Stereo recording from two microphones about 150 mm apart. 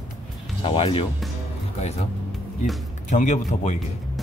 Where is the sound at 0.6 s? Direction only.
40° left (ahead or behind).